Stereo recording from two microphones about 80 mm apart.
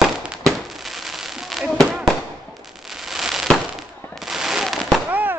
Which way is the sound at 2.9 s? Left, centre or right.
Centre.